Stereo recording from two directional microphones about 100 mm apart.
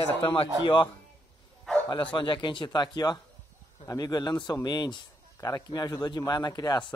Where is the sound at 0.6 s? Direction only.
55° left (ahead or behind).